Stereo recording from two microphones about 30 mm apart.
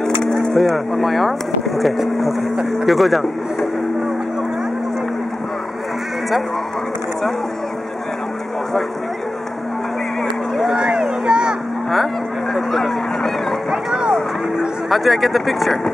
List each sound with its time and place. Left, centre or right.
0.6 s speech: centre
10.7 s a sound: right
12.7 s speech: centre
14.9 s speech: centre